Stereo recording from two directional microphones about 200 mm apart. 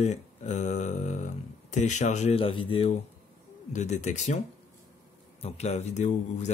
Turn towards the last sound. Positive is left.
turn(degrees=35)  # may be behind; listen again after turning